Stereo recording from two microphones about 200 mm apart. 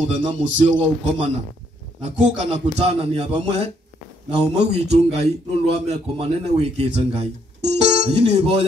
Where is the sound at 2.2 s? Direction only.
35° right (ahead or behind).